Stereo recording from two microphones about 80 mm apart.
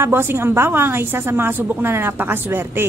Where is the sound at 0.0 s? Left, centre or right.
Right.